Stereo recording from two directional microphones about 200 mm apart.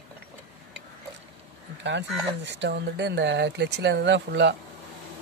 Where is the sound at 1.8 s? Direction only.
60° right (ahead or behind).